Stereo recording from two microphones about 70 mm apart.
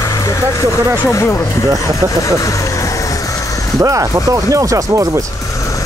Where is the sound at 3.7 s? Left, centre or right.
Right.